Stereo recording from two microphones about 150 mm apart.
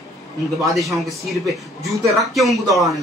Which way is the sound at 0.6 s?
Centre (ahead or behind).